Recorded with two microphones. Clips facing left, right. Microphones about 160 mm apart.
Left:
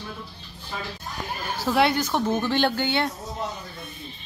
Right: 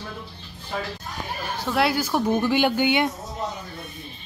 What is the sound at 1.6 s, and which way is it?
A woman's voice, centre (ahead or behind).